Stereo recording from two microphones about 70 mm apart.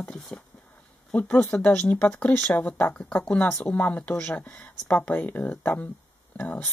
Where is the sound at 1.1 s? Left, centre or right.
Centre.